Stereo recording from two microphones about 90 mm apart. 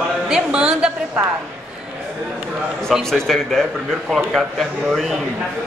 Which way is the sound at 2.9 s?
5° left (ahead or behind).